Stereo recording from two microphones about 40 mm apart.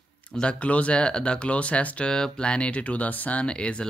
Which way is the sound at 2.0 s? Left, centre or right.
Centre.